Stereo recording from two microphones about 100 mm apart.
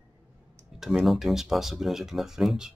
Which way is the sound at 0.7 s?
5° right (ahead or behind).